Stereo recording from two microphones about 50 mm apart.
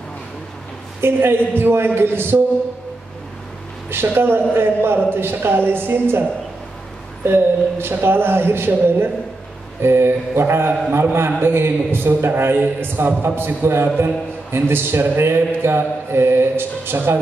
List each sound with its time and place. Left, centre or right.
1.0 s a man's voice: right
3.9 s a man's voice: right
7.2 s a man's voice: right
9.8 s mantra: right
11.4 s a man's voice: right